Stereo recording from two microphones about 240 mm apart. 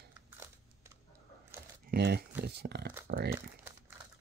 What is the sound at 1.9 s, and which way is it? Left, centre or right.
Speech, right.